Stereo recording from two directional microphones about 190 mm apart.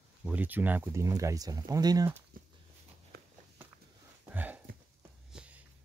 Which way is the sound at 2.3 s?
50° right (ahead or behind).